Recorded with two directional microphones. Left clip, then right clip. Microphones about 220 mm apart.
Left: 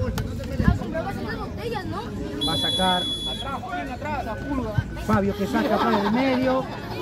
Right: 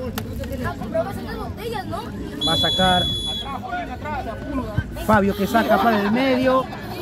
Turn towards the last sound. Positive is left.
turn(degrees=-50)  # may be behind; listen again after turning